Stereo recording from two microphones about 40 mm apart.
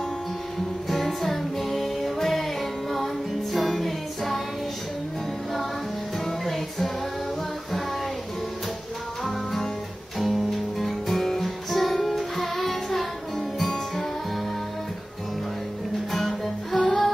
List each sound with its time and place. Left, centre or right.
0.8 s music: centre
3.5 s music: centre
6.2 s music: centre
9.2 s music: centre
10.8 s music: centre
16.1 s music: centre